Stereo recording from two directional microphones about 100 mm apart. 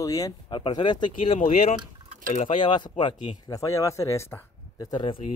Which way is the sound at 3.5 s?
30° left (ahead or behind).